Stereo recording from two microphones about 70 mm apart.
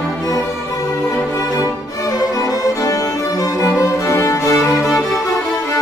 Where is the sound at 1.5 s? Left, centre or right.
Left.